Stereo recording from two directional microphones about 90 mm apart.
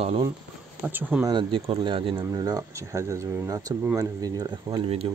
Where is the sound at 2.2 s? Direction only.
45° right (ahead or behind).